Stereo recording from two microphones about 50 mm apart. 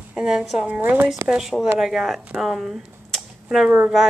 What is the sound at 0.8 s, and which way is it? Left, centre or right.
Speech, right.